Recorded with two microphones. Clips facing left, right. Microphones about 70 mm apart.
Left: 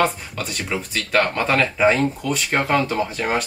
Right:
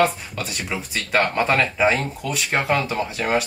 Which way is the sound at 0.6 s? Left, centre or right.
Centre.